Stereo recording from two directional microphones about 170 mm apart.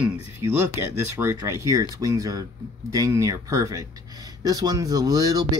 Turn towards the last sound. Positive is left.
turn(degrees=-20)  # may be behind; listen again after turning